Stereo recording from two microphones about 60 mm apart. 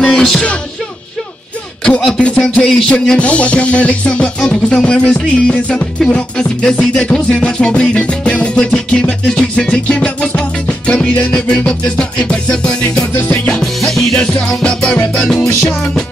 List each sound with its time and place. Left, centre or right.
0.0 s music: centre
2.0 s music: centre
13.6 s music: centre
14.5 s music: centre